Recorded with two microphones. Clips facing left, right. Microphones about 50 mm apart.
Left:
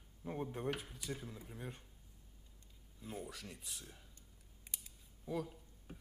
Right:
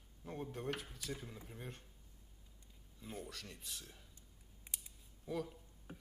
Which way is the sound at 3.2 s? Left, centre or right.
Centre.